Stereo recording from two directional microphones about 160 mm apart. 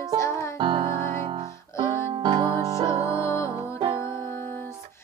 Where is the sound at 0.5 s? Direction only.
30° right (ahead or behind).